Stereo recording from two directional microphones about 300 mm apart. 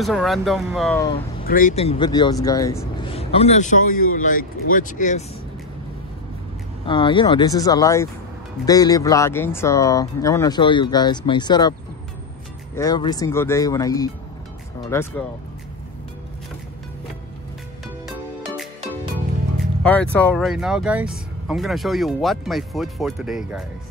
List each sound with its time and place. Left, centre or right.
0.0 s speech: centre
1.4 s speech: left
6.9 s speech: centre
12.7 s speech: centre
19.6 s speech: centre